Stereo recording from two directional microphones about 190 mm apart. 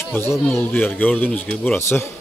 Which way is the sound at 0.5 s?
10° left (ahead or behind).